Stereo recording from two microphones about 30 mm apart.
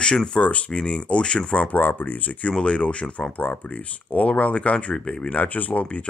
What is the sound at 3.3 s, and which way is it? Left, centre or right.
Speech, left.